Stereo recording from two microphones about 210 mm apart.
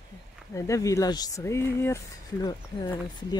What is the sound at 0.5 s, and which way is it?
Speech, 15° left (ahead or behind).